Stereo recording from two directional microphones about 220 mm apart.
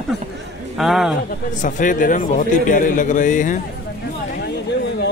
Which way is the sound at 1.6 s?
35° left (ahead or behind).